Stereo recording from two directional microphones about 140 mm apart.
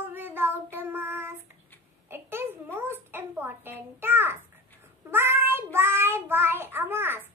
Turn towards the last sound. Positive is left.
turn(degrees=-15)  # may be behind; listen again after turning